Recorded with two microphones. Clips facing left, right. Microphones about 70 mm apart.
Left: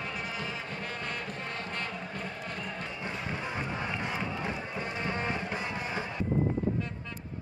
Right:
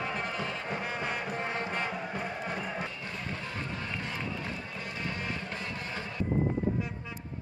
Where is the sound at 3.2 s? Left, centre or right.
Centre.